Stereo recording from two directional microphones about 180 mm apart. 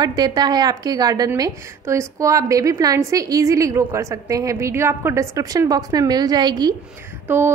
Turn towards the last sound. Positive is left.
turn(degrees=-10)  # may be behind; listen again after turning